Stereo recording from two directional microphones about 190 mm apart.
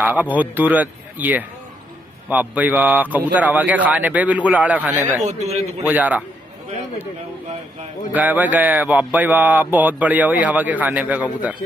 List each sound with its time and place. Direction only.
0.0 s speech: 10° right (ahead or behind)
4.9 s a man's voice: 35° right (ahead or behind)
5.9 s speech: 10° right (ahead or behind)
8.1 s speech: 10° right (ahead or behind)